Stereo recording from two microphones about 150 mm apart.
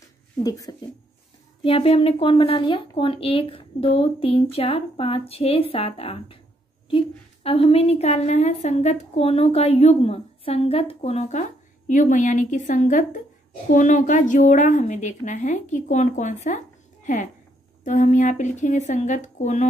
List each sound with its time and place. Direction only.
0.4 s speech: 25° left (ahead or behind)
1.6 s a woman's voice: 40° left (ahead or behind)
7.4 s a woman's voice: 40° left (ahead or behind)